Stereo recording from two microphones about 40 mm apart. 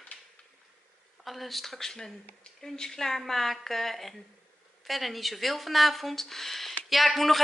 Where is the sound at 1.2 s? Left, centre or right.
Centre.